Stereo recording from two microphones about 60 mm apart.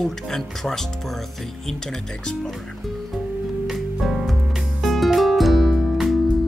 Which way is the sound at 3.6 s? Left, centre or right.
Centre.